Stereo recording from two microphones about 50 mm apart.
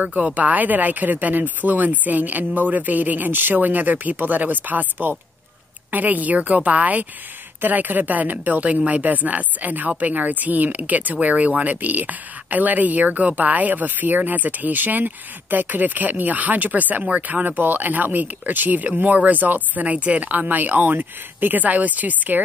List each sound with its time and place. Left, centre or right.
0.0 s speech: right
5.9 s speech: right